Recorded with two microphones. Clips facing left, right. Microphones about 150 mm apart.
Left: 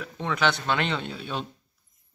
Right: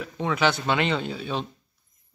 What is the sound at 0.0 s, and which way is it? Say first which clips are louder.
Speech: right 2 dB; 5° right (ahead or behind).